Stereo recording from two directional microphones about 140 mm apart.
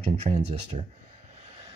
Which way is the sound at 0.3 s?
40° right (ahead or behind).